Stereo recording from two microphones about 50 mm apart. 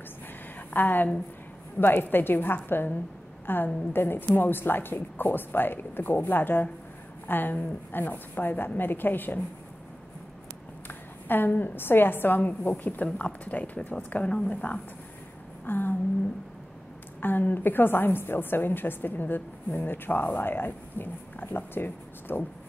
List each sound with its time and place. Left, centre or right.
0.7 s a woman's voice: left
10.9 s a woman's voice: left
15.6 s a sound: left
17.2 s a woman's voice: left